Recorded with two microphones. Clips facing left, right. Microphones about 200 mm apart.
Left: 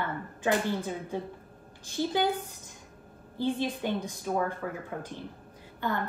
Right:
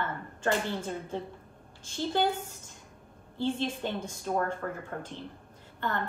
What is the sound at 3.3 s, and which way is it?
A woman's voice, 15° left (ahead or behind).